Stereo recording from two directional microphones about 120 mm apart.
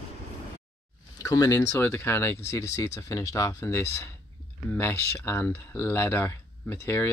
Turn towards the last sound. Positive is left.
turn(degrees=20)  # may be behind; listen again after turning